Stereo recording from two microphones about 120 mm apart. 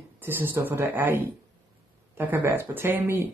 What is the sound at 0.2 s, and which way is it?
A woman's voice, 15° right (ahead or behind).